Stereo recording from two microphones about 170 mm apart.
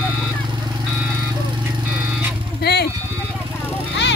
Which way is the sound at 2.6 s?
70° left (ahead or behind).